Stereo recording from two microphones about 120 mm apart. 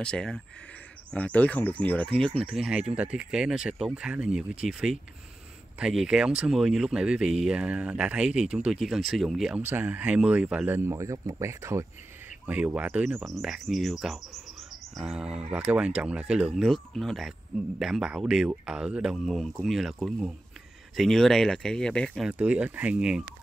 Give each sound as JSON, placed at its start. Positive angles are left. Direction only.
{"t": 0.0, "sound": "speech", "side_deg": 5}
{"t": 2.5, "sound": "speech", "side_deg": -5}
{"t": 9.7, "sound": "speech", "side_deg": -15}
{"t": 10.8, "sound": "speech", "side_deg": -25}
{"t": 12.4, "sound": "speech", "side_deg": -10}
{"t": 13.2, "sound": "speech", "side_deg": 0}
{"t": 22.3, "sound": "speech", "side_deg": -10}